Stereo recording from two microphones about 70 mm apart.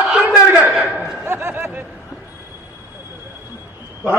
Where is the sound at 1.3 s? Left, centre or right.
Right.